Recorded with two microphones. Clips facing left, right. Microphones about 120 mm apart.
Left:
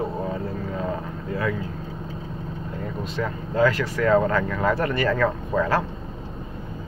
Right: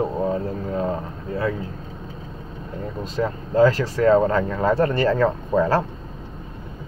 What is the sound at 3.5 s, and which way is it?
Speech, 35° right (ahead or behind).